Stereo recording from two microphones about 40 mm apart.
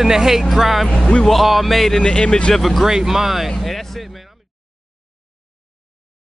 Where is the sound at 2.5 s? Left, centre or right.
Centre.